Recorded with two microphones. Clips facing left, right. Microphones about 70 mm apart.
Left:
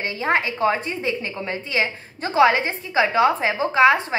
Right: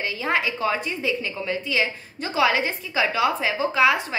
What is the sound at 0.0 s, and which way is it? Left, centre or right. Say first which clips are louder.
A woman's voice: left 2 dB; left.